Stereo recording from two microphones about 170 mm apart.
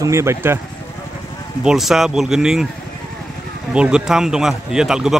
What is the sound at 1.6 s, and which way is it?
A man's voice, 5° right (ahead or behind).